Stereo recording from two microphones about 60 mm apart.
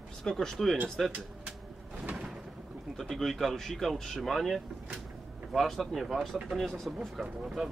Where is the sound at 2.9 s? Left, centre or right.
Centre.